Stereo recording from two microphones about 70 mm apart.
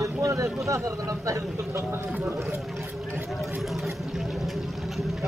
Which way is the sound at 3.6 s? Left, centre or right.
Centre.